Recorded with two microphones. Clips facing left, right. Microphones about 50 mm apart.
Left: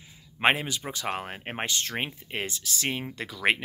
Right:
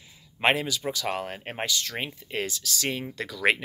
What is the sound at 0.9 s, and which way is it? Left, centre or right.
Speech, left.